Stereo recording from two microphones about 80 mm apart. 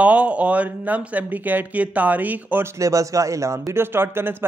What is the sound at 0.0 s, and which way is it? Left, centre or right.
Speech, centre.